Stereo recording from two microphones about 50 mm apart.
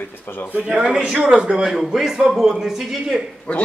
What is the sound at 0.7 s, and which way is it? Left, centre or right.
Speech, centre.